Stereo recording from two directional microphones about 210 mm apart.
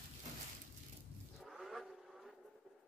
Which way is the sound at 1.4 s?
Centre (ahead or behind).